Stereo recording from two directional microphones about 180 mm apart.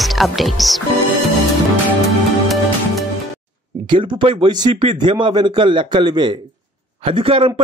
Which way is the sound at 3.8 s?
25° right (ahead or behind).